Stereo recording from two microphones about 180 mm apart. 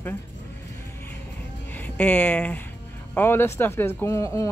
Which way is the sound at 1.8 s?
10° left (ahead or behind).